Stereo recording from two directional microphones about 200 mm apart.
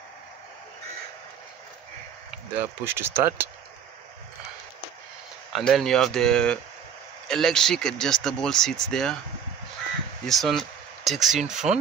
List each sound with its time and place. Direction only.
2.6 s speech: 10° right (ahead or behind)
5.5 s speech: centre (ahead or behind)
10.2 s speech: centre (ahead or behind)
11.5 s speech: 35° right (ahead or behind)